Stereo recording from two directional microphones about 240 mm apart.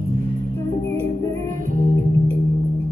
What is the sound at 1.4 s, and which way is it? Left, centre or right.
Music, right.